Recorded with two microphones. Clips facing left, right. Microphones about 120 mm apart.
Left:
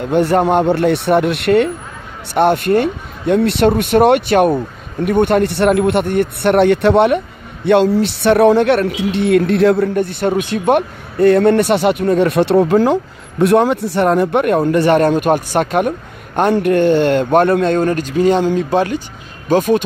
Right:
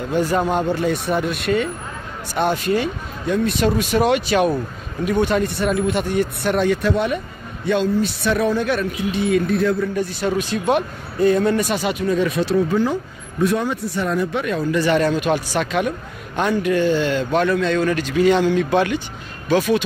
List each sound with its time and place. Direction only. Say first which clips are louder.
0.1 s speech: left 7 dB; 65° left (ahead or behind); by 19.8 s 45° left (ahead or behind)